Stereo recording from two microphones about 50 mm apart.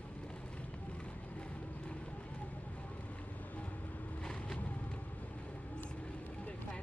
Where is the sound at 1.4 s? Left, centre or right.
Left.